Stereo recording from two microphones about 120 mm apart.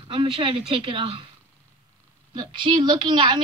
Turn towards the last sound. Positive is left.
turn(degrees=-40)  # may be behind; listen again after turning